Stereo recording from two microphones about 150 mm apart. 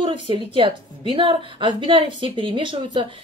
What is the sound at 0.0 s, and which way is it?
A woman's voice, 35° right (ahead or behind).